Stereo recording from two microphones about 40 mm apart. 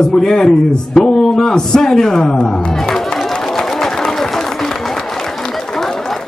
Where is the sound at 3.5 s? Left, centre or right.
Centre.